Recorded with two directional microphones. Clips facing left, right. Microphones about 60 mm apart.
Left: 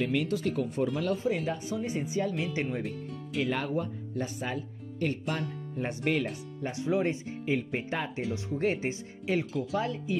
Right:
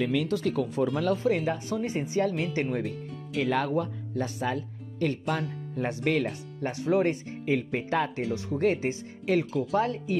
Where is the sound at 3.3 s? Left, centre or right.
Right.